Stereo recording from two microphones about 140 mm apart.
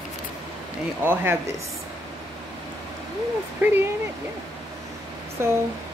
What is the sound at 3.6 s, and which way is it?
Speech, 10° right (ahead or behind).